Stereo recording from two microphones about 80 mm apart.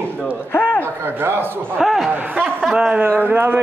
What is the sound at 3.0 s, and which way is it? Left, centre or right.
Speech, right.